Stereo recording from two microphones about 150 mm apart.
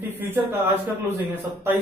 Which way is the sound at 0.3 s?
15° right (ahead or behind).